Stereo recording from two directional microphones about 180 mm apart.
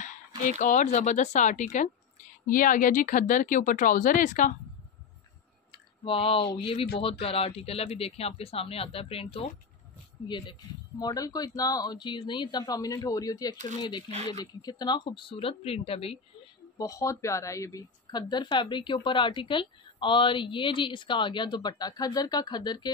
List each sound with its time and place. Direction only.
0.6 s speech: 45° left (ahead or behind)
6.0 s speech: 30° left (ahead or behind)
14.1 s speech: 35° right (ahead or behind)
14.4 s speech: 20° left (ahead or behind)
16.7 s speech: 20° left (ahead or behind)